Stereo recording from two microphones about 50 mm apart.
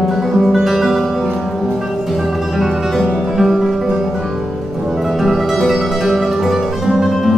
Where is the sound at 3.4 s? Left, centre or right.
Centre.